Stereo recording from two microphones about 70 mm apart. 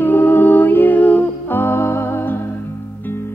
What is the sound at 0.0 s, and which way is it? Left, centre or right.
Music, left.